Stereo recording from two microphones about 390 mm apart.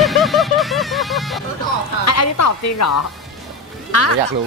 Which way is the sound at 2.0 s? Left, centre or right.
Left.